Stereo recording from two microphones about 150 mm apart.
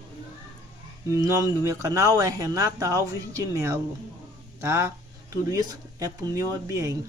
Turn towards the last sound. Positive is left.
turn(degrees=-20)  # may be behind; listen again after turning